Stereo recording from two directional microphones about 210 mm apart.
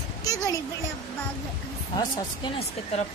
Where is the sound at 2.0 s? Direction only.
20° left (ahead or behind).